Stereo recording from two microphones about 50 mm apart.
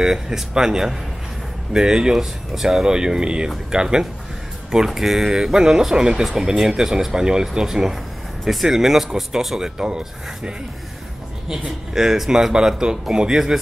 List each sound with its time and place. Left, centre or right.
0.0 s speech: centre